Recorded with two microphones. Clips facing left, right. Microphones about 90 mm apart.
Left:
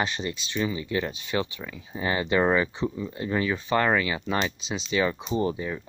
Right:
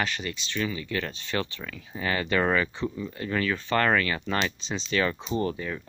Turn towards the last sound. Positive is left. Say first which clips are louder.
# left 2 dB
turn(degrees=15)  # may be behind; listen again after turning